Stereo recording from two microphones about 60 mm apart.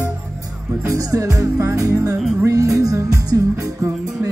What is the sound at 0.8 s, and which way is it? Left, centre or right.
Music, right.